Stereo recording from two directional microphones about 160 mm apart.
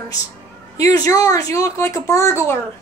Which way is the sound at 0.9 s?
20° left (ahead or behind).